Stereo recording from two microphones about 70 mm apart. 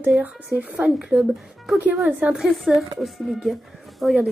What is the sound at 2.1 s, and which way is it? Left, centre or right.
Speech, right.